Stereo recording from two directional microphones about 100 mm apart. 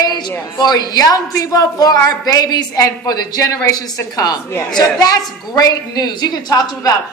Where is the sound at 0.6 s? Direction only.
40° left (ahead or behind).